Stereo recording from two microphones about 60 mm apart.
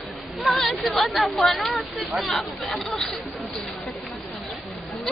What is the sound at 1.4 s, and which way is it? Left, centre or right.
Speech, centre.